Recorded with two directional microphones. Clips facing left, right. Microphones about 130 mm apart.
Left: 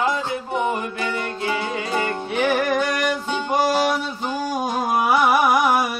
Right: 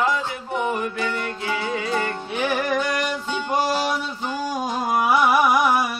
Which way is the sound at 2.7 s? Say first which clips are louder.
Left 2 dB; 45° left (ahead or behind).